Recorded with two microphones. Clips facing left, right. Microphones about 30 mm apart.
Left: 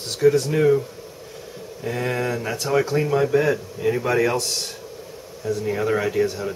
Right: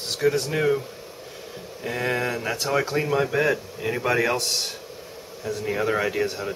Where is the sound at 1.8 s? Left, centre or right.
Centre.